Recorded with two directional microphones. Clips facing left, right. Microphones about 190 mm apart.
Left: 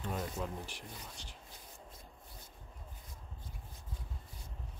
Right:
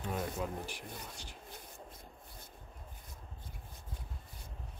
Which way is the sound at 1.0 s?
65° right (ahead or behind).